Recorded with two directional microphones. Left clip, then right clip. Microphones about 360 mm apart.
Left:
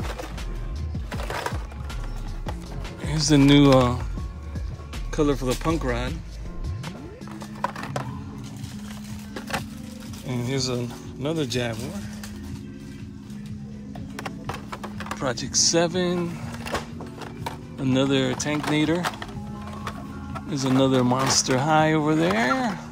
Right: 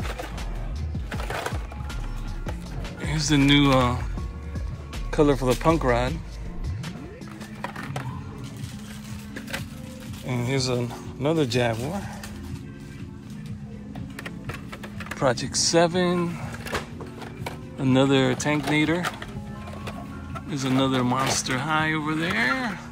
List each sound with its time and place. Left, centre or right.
3.0 s speech: centre
5.1 s speech: centre
7.6 s a sound: left
10.2 s speech: centre
15.1 s speech: centre
17.7 s speech: centre
20.4 s speech: centre